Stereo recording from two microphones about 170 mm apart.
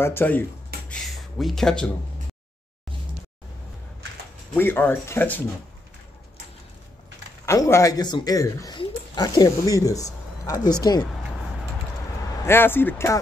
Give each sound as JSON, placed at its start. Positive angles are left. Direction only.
{"t": 0.0, "sound": "speech", "side_deg": 10}
{"t": 4.6, "sound": "speech", "side_deg": 10}
{"t": 7.4, "sound": "speech", "side_deg": 15}
{"t": 12.4, "sound": "speech", "side_deg": 15}